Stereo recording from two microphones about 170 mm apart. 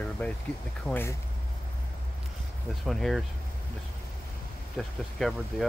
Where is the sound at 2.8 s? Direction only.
Centre (ahead or behind).